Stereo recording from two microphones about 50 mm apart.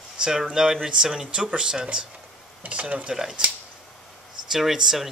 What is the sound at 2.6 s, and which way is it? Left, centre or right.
Speech, right.